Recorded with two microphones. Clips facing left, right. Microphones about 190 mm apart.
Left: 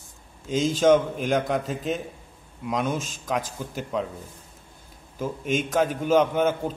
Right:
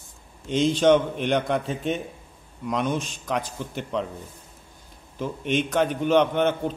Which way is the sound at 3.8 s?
5° left (ahead or behind).